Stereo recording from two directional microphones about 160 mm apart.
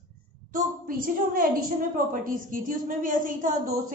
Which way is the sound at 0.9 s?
60° right (ahead or behind).